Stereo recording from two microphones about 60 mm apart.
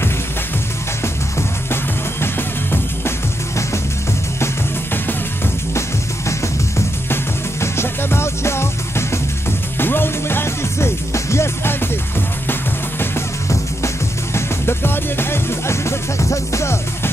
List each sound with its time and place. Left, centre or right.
7.6 s music: left
13.5 s music: left